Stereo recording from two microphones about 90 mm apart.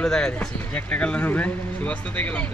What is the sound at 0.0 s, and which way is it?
Speech, 10° left (ahead or behind).